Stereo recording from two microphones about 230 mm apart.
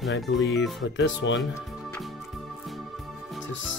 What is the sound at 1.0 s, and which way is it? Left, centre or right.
Speech, left.